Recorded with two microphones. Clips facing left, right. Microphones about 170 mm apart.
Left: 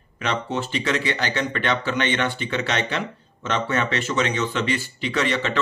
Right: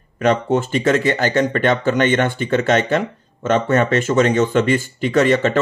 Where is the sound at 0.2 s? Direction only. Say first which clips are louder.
Right 9 dB; 50° right (ahead or behind).